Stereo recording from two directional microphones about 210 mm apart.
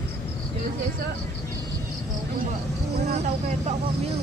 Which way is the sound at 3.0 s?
30° right (ahead or behind).